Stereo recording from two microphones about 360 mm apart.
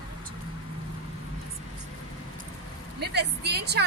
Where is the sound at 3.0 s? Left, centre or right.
Right.